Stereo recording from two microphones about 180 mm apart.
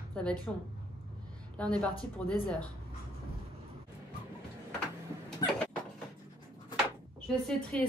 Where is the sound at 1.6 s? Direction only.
5° left (ahead or behind).